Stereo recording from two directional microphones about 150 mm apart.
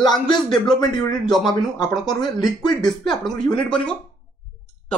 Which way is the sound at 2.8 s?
5° left (ahead or behind).